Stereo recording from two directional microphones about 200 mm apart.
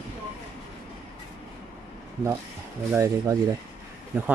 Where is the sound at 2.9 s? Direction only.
15° right (ahead or behind).